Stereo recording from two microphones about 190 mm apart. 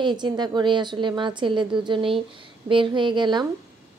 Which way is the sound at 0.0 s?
25° right (ahead or behind).